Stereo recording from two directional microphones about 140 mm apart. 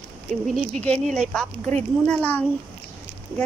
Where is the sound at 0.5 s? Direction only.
5° left (ahead or behind).